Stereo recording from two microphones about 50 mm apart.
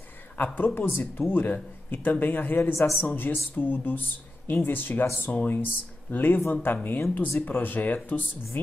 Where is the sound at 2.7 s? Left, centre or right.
Left.